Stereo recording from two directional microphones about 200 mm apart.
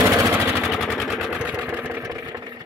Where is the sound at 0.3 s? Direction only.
10° right (ahead or behind).